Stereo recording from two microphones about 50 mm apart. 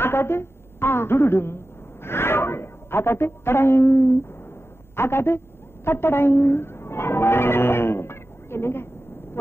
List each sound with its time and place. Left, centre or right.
0.0 s a woman's voice: left
5.9 s music: left